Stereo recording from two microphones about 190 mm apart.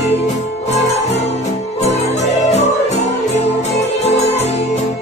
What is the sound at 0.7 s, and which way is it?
Music, 35° left (ahead or behind).